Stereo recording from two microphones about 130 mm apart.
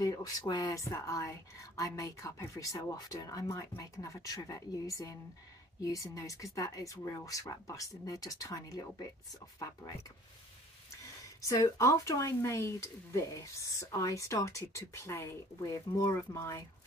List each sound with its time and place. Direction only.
0.0 s speech: 25° left (ahead or behind)
10.9 s speech: 25° left (ahead or behind)